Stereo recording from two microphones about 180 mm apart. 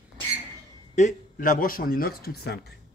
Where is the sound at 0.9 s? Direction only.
45° left (ahead or behind); by 2.6 s 60° left (ahead or behind).